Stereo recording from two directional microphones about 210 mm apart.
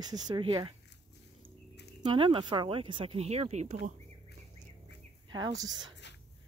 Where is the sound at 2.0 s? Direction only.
25° right (ahead or behind).